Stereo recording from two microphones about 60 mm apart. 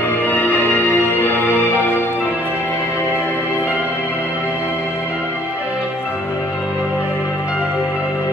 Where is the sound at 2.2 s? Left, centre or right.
Right.